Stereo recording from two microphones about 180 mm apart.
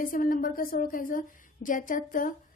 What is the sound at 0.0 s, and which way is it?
Speech, 50° left (ahead or behind).